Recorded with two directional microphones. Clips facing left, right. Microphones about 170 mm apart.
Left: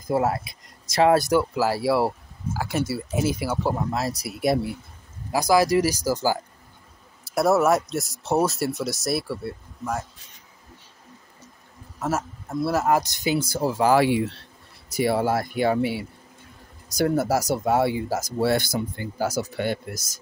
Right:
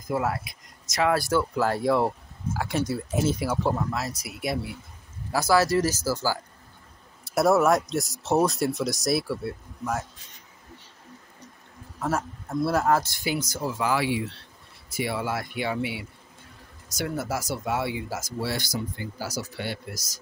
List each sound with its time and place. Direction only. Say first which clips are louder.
0.1 s speech: left 4 dB; 30° left (ahead or behind); by 3.7 s 5° left (ahead or behind)
3.7 s speech: left 3 dB; 25° left (ahead or behind)
5.3 s speech: left 2 dB; 15° left (ahead or behind)
7.2 s speech: left 1 dB; centre (ahead or behind)
12.0 s speech: left 1 dB; 5° left (ahead or behind)
12.9 s speech: left 3 dB; 15° left (ahead or behind); by 18.5 s 40° left (ahead or behind)
18.5 s speech: left 7 dB; 55° left (ahead or behind)